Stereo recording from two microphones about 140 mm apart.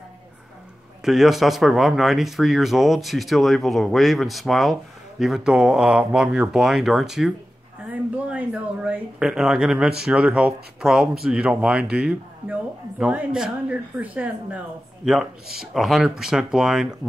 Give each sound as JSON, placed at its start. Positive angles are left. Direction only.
{"t": 1.0, "sound": "speech", "side_deg": 0}